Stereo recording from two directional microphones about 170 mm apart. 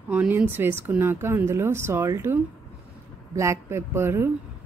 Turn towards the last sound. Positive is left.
turn(degrees=-15)  # may be behind; listen again after turning